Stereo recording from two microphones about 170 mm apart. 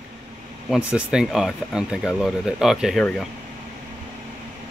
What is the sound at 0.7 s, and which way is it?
Speech, 5° right (ahead or behind).